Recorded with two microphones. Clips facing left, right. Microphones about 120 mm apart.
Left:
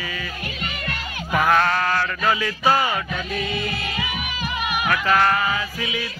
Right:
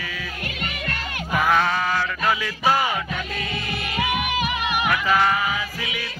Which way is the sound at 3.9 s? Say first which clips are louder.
Right 5 dB; 65° right (ahead or behind).